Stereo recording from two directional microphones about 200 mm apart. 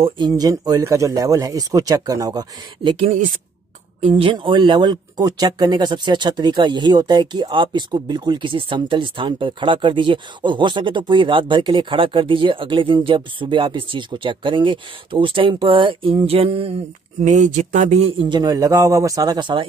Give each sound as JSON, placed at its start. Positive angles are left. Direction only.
{"t": 0.0, "sound": "speech", "side_deg": -20}
{"t": 18.4, "sound": "speech", "side_deg": -20}